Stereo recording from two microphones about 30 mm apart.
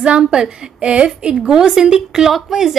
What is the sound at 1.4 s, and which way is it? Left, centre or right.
A woman's voice, centre.